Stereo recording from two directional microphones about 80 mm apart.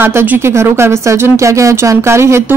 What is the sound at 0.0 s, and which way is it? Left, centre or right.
A woman's voice, right.